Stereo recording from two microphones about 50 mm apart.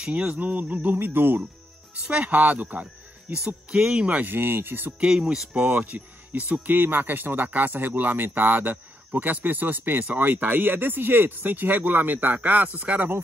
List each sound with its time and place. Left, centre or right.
0.2 s speech: right
0.9 s speech: right
2.0 s speech: right
3.3 s speech: centre
4.2 s speech: right
5.0 s speech: centre
5.7 s speech: right